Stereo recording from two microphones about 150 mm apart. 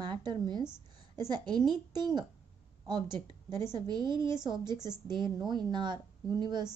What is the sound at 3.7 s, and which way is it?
A woman's voice, 30° right (ahead or behind).